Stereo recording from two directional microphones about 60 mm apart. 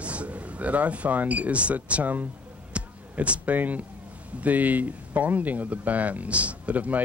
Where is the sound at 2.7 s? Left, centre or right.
Right.